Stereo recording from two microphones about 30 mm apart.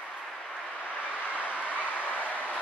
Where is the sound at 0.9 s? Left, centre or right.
Left.